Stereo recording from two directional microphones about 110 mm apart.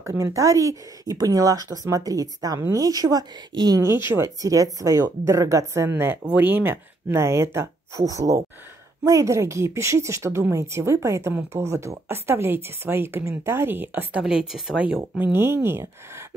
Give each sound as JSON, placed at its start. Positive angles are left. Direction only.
{"t": 0.0, "sound": "speech", "side_deg": -25}
{"t": 4.0, "sound": "speech", "side_deg": -25}
{"t": 14.2, "sound": "speech", "side_deg": -5}
{"t": 15.0, "sound": "speech", "side_deg": -20}